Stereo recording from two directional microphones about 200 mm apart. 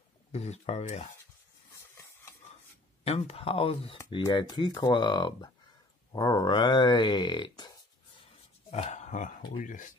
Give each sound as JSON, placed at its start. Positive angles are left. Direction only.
{"t": 0.3, "sound": "speech", "side_deg": 35}
{"t": 3.1, "sound": "speech", "side_deg": 30}
{"t": 8.6, "sound": "a sound", "side_deg": 35}
{"t": 9.6, "sound": "speech", "side_deg": 40}